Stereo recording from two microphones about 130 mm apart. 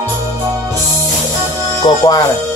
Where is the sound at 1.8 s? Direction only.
40° left (ahead or behind).